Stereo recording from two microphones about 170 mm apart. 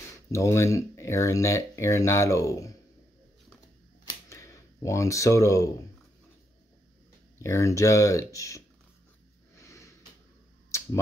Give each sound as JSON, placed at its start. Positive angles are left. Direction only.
{"t": 0.3, "sound": "speech", "side_deg": 15}
{"t": 4.0, "sound": "camera", "side_deg": 20}
{"t": 7.4, "sound": "speech", "side_deg": 15}
{"t": 9.6, "sound": "sniff", "side_deg": 20}